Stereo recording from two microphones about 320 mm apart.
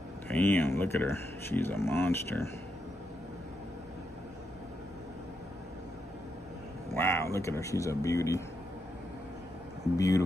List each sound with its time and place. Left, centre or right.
0.3 s speech: centre
6.9 s speech: centre
9.9 s speech: centre